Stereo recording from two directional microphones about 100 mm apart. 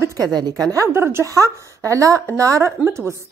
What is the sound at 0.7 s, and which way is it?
A woman's voice, 30° right (ahead or behind).